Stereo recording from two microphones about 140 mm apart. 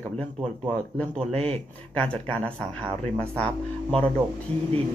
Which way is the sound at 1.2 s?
45° right (ahead or behind).